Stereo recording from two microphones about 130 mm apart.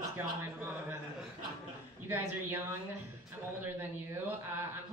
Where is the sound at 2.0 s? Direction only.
15° right (ahead or behind).